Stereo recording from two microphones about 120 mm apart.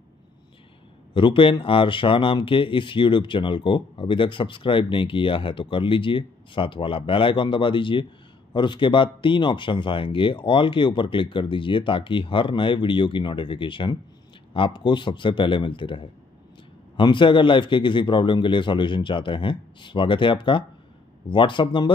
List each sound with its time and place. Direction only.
1.1 s speech: 45° left (ahead or behind)